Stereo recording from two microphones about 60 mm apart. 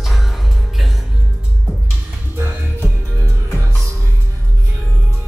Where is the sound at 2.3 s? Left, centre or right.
Right.